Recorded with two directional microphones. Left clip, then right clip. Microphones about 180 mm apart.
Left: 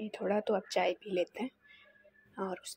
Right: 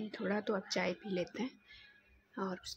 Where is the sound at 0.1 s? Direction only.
15° left (ahead or behind).